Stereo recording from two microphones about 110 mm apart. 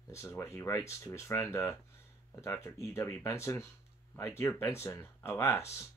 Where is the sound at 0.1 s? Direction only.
25° left (ahead or behind).